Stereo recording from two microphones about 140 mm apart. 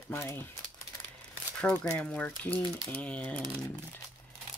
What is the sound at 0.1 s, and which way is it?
Speech, 15° left (ahead or behind).